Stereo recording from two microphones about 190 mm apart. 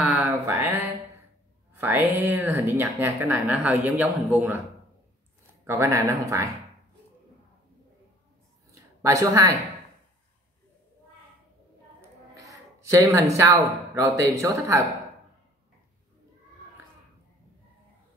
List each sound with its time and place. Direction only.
0.0 s a sound: 5° right (ahead or behind)
1.8 s speech: 10° right (ahead or behind)
5.7 s speech: 15° right (ahead or behind)
9.0 s speech: 15° right (ahead or behind)
12.4 s a sound: 15° right (ahead or behind)
13.4 s speech: 15° right (ahead or behind)